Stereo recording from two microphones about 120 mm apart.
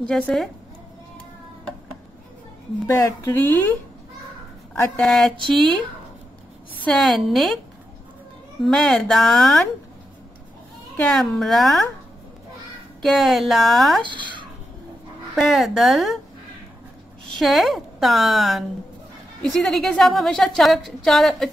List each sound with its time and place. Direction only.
0.1 s a woman's voice: 5° left (ahead or behind)
2.9 s speech: 20° left (ahead or behind)
4.9 s a woman's voice: 5° left (ahead or behind)
6.8 s a woman's voice: 5° left (ahead or behind)
8.6 s a woman's voice: 5° left (ahead or behind)
11.1 s a woman's voice: centre (ahead or behind)
13.0 s a woman's voice: centre (ahead or behind)
14.0 s speech: 40° right (ahead or behind)
15.3 s a woman's voice: centre (ahead or behind)
17.4 s a woman's voice: centre (ahead or behind)